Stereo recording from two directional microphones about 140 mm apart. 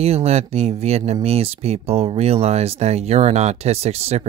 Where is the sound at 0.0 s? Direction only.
50° right (ahead or behind).